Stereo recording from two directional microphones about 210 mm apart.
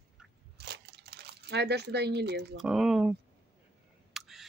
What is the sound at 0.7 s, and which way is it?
Crumpling, 50° right (ahead or behind).